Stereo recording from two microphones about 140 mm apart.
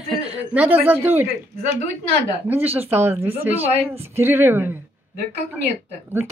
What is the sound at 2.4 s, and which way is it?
Speech, 15° right (ahead or behind).